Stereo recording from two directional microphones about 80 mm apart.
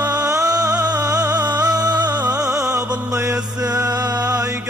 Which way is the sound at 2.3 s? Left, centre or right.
Right.